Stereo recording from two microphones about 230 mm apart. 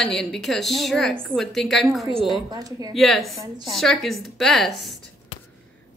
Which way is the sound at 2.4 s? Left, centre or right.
Centre.